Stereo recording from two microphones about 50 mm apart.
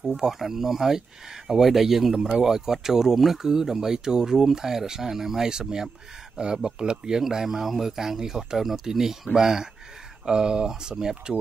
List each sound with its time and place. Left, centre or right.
0.0 s speech: centre